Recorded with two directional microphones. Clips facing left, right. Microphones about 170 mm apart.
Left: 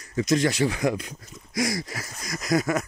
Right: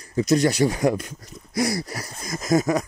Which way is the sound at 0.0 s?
35° right (ahead or behind).